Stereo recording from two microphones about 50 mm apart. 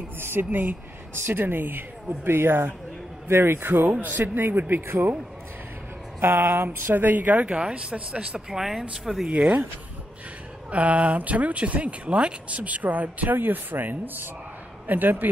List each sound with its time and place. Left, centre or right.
0.2 s speech: right
1.1 s speech: right
6.2 s speech: right
8.5 s speech: centre
10.7 s speech: right